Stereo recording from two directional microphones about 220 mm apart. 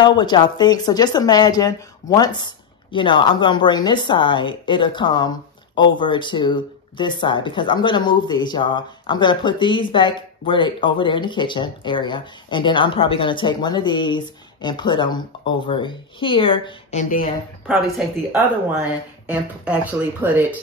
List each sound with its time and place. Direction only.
0.0 s speech: 20° left (ahead or behind)
17.0 s speech: 40° left (ahead or behind)
17.6 s speech: 5° right (ahead or behind)